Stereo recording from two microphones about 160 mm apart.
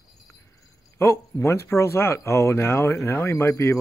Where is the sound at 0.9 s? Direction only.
20° left (ahead or behind).